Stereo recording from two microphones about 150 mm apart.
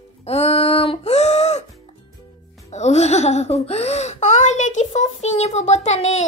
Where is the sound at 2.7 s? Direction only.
50° left (ahead or behind).